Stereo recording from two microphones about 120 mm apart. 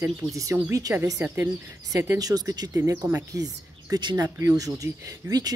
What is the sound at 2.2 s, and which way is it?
Speech, 30° right (ahead or behind).